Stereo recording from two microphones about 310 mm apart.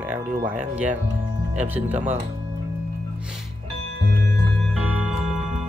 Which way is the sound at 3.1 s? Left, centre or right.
Centre.